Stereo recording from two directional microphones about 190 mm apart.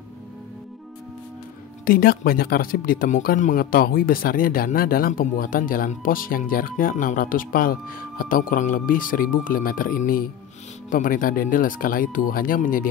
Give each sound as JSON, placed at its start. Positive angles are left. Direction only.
{"t": 1.9, "sound": "speech", "side_deg": 50}